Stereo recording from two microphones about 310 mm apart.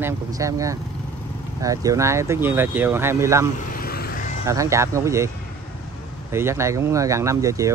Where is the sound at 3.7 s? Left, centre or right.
Left.